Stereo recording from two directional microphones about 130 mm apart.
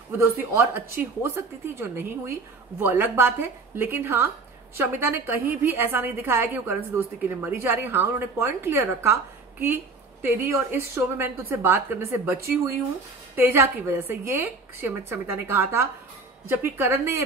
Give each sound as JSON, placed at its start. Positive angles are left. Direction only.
{"t": 0.4, "sound": "a woman's voice", "side_deg": -15}